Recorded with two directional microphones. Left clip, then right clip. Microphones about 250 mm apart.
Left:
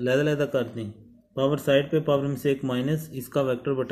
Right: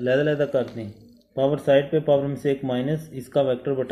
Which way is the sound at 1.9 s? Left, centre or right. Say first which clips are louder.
Right 3 dB; centre.